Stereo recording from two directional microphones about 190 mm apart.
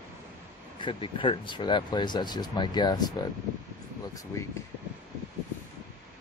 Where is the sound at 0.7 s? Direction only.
25° left (ahead or behind).